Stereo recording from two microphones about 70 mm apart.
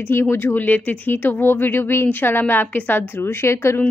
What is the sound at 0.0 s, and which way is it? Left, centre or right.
Speech, left.